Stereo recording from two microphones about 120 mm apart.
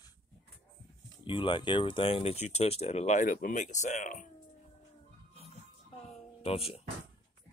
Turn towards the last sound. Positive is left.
turn(degrees=55)  # may be behind; listen again after turning